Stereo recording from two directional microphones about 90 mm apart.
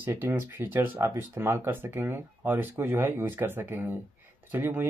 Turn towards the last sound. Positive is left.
turn(degrees=-25)  # may be behind; listen again after turning